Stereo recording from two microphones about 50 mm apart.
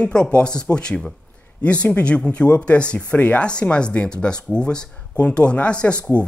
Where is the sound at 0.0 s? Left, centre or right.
Centre.